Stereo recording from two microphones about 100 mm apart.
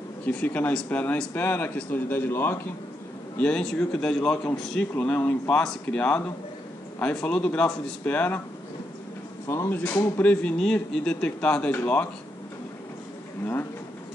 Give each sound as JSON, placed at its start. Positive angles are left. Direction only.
{"t": 0.2, "sound": "speech", "side_deg": 15}
{"t": 3.3, "sound": "a man's voice", "side_deg": 10}
{"t": 4.9, "sound": "speech", "side_deg": 15}
{"t": 9.5, "sound": "speech", "side_deg": 25}